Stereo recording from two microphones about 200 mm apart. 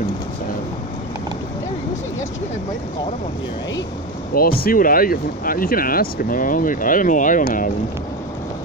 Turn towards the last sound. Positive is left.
turn(degrees=40)  # may be behind; listen again after turning